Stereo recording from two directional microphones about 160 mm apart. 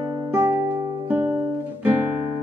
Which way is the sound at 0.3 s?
10° right (ahead or behind).